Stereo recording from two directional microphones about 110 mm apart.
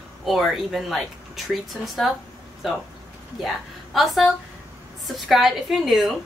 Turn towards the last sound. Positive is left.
turn(degrees=0)  # may be behind; listen again after turning